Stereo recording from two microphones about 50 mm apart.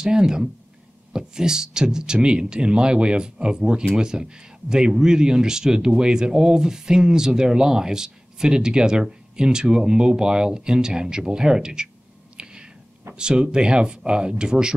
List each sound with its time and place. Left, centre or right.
0.0 s speech: centre
12.4 s a sound: centre
13.1 s speech: centre